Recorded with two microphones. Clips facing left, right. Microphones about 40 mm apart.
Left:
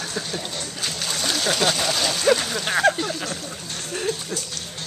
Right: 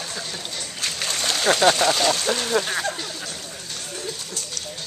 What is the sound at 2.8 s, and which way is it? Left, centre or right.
Speech, left.